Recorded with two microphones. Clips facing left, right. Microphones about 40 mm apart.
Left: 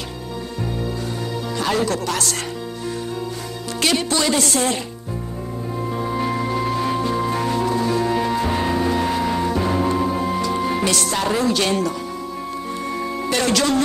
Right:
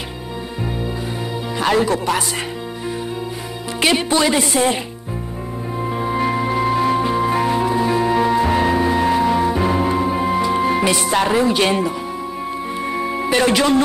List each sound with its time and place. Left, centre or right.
1.6 s speech: right
3.8 s speech: right
5.8 s music: right
11.1 s speech: right
12.7 s music: right